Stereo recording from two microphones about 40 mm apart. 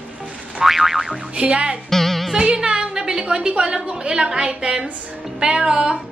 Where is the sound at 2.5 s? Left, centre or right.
Right.